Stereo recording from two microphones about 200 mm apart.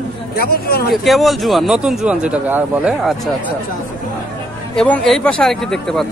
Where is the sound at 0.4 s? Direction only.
50° left (ahead or behind).